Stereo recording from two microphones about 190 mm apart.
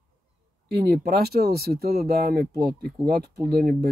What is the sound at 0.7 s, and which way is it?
Speech, 60° right (ahead or behind).